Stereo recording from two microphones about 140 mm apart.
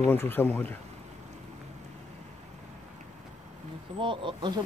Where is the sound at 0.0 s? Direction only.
15° left (ahead or behind).